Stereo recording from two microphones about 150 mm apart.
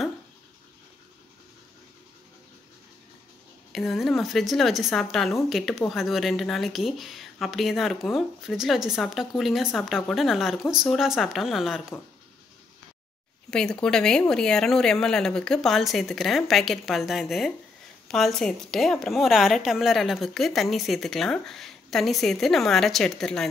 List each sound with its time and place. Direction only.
3.7 s a woman's voice: centre (ahead or behind)
13.5 s a woman's voice: 5° left (ahead or behind)